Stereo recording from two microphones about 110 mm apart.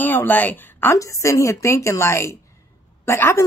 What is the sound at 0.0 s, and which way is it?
A woman's voice, 15° left (ahead or behind).